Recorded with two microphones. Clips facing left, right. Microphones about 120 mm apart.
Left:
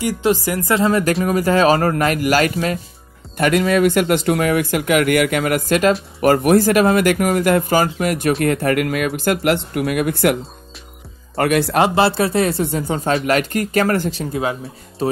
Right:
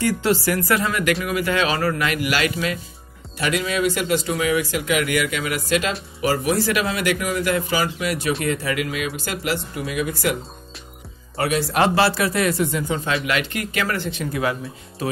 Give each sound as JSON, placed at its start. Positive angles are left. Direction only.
{"t": 0.0, "sound": "speech", "side_deg": 20}
{"t": 11.3, "sound": "speech", "side_deg": 55}
{"t": 11.8, "sound": "speech", "side_deg": 25}